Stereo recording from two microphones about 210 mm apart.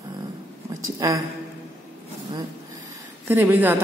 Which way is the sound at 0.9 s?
15° right (ahead or behind).